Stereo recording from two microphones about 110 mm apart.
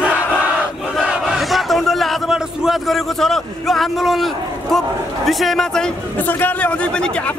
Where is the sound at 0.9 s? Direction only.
5° right (ahead or behind).